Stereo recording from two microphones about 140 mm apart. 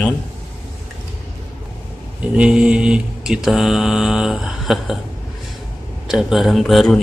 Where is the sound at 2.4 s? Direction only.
5° right (ahead or behind).